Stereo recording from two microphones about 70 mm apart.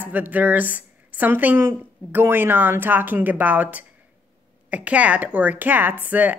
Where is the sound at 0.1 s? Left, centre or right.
Right.